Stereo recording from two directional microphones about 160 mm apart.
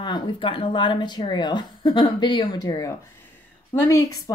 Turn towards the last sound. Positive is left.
turn(degrees=20)  # may be behind; listen again after turning